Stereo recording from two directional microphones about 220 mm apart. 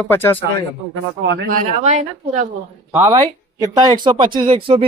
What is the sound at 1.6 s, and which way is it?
Speech, 30° right (ahead or behind).